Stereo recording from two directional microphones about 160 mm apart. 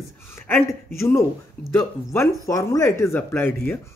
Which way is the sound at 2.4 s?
20° left (ahead or behind).